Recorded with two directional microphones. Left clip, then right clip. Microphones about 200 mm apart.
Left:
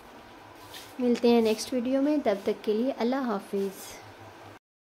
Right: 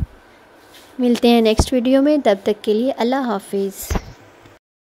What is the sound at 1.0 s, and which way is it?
Speech, 45° right (ahead or behind).